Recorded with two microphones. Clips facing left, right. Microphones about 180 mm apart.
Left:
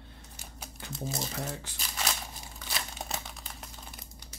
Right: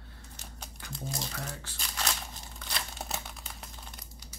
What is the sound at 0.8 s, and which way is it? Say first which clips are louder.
Crumpling: left 2 dB; 25° left (ahead or behind).